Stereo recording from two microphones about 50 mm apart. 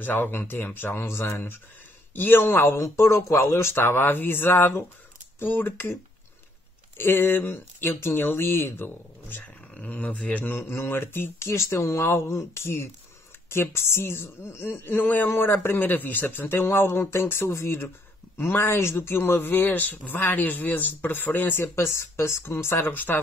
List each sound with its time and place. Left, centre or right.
0.0 s speech: left
2.1 s speech: left
2.6 s speech: left
3.8 s speech: left
7.0 s speech: left
9.4 s speech: left
10.5 s speech: left
11.4 s speech: left
11.7 s speech: left
16.4 s speech: left
21.7 s speech: left
22.8 s speech: left